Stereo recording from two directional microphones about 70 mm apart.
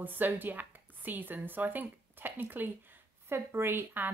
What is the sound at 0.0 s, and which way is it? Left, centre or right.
A woman's voice, right.